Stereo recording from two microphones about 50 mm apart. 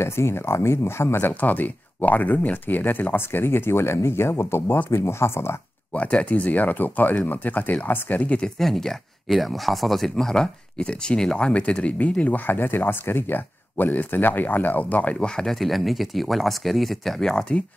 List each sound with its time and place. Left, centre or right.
0.0 s speech: left
1.4 s speech: left
5.9 s speech: left
8.5 s speech: centre; by 12.1 s left
12.4 s speech: left
15.1 s speech: centre
15.5 s speech: centre